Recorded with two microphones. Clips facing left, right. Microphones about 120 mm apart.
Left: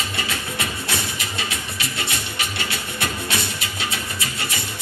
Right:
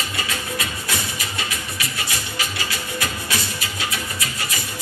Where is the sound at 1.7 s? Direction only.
25° left (ahead or behind).